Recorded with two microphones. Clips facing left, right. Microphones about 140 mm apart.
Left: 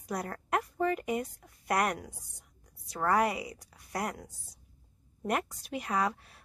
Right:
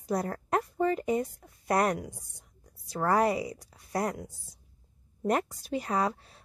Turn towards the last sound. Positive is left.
turn(degrees=-30)  # may be behind; listen again after turning